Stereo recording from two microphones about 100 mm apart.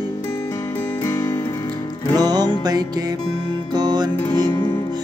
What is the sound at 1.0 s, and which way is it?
Music, 35° left (ahead or behind).